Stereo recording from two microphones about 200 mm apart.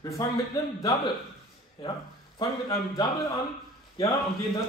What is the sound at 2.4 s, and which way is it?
Speech, 20° left (ahead or behind).